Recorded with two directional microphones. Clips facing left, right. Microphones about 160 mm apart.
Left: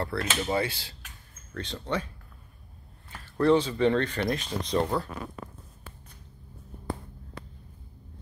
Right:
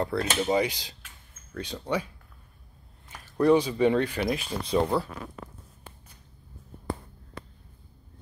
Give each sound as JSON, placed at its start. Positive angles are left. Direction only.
{"t": 0.0, "sound": "speech", "side_deg": -15}
{"t": 3.1, "sound": "speech", "side_deg": -15}